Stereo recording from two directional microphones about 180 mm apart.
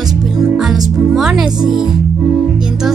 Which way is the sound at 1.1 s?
Centre (ahead or behind).